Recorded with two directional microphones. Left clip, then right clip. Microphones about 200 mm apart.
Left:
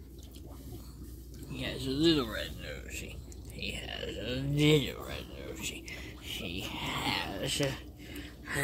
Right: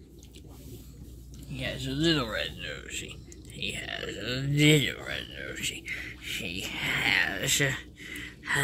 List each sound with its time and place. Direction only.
1.6 s speech: 15° right (ahead or behind)